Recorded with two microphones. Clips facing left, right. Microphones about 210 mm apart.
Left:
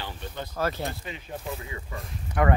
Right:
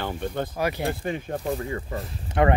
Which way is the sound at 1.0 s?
50° right (ahead or behind).